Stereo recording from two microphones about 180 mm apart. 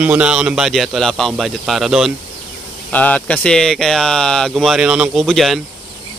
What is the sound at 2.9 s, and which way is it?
A man's voice, 10° left (ahead or behind).